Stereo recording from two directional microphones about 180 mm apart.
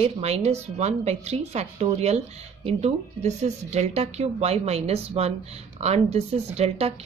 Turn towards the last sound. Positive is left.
turn(degrees=-35)  # may be behind; listen again after turning